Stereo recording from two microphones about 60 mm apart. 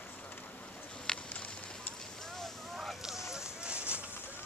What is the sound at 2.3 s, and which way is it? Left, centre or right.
Vehicle, centre.